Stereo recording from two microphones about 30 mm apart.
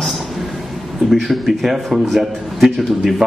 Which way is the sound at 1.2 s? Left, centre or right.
Centre.